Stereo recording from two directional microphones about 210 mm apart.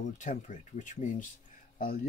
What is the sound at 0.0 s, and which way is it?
Speech, 35° left (ahead or behind).